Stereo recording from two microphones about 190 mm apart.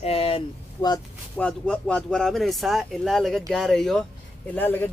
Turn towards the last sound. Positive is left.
turn(degrees=10)  # may be behind; listen again after turning